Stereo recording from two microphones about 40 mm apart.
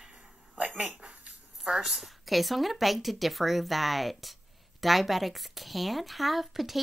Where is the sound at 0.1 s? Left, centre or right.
Right.